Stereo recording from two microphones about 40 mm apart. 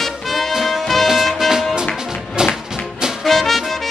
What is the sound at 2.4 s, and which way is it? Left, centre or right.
Music, centre.